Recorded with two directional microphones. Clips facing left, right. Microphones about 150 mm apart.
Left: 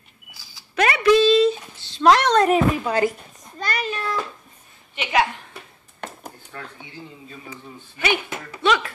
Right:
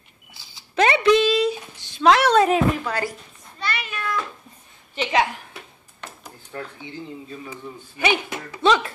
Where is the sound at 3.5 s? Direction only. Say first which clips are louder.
Left 3 dB; 40° left (ahead or behind).